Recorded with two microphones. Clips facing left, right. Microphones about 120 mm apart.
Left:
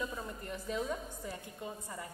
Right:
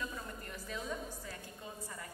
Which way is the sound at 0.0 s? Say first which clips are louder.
Left 3 dB; 20° left (ahead or behind).